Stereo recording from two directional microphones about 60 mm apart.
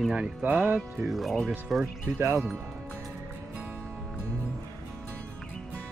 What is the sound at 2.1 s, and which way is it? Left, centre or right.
Speech, right.